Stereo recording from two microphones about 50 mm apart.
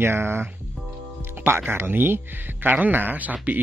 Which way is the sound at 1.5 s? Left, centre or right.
Right.